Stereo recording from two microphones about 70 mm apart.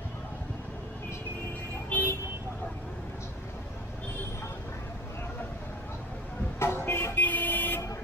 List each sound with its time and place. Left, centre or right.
1.9 s vehicle: left
6.6 s vehicle: left
7.2 s vehicle: left